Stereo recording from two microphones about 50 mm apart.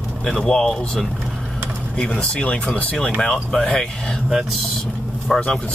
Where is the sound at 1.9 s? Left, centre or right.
Left.